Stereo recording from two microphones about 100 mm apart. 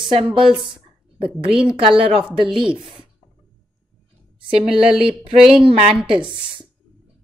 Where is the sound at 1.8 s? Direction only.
65° right (ahead or behind).